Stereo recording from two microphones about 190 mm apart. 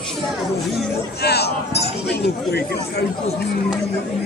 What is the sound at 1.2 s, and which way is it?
Speech, 60° left (ahead or behind).